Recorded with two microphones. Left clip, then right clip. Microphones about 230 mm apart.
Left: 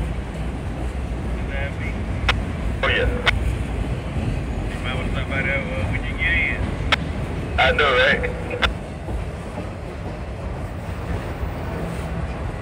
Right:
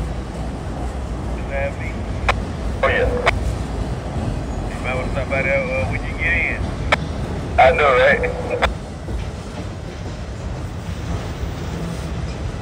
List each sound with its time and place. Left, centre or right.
2.8 s vehicle: right
4.8 s vehicle: right